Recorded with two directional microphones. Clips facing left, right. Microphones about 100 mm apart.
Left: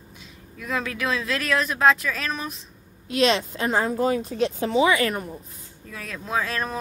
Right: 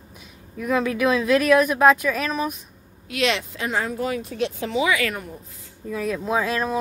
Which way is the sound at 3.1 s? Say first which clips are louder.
Left 2 dB; 30° left (ahead or behind).